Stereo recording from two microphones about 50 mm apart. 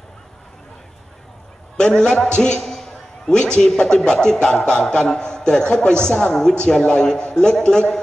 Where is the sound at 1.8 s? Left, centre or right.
Centre.